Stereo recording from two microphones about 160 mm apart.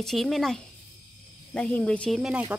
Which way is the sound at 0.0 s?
Centre (ahead or behind).